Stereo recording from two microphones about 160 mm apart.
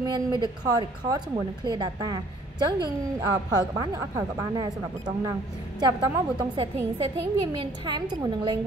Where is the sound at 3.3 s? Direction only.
25° right (ahead or behind).